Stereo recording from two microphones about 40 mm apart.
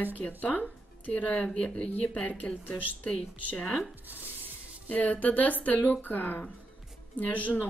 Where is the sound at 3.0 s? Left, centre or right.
Left.